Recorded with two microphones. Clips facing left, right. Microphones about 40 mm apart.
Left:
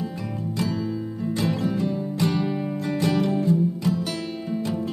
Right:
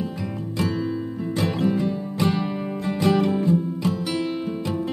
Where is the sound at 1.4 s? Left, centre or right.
Centre.